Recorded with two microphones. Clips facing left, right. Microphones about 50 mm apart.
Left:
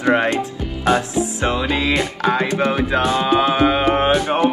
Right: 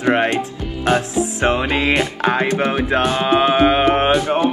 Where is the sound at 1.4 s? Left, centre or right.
Right.